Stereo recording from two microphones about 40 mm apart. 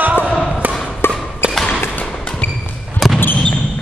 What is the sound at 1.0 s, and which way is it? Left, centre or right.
Thump, left.